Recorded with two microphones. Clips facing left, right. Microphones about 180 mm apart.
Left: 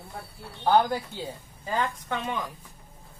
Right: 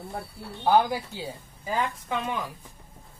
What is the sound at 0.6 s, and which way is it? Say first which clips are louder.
Speech: even; 10° right (ahead or behind).